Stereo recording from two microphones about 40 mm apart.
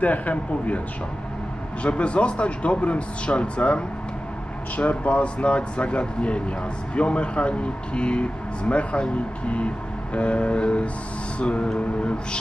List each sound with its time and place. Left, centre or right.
0.0 s speech: left
10.1 s speech: left